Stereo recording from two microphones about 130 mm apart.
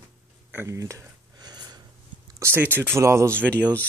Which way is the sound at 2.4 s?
15° right (ahead or behind).